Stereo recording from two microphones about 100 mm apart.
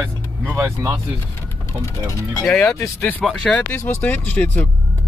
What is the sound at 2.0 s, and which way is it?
Speech, 30° left (ahead or behind).